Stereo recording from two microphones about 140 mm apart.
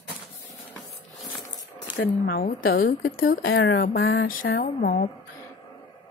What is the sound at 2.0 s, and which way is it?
A woman's voice, 90° left.